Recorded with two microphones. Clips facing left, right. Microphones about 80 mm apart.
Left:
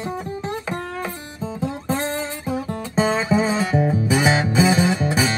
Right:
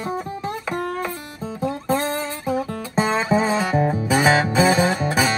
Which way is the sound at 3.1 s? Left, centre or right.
Right.